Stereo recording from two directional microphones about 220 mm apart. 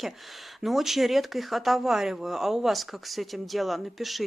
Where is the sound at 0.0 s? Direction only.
Centre (ahead or behind).